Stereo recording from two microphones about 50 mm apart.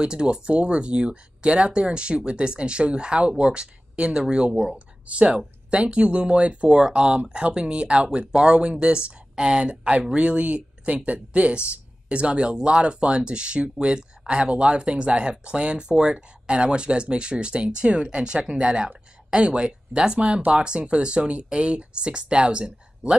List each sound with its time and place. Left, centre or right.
0.0 s speech: centre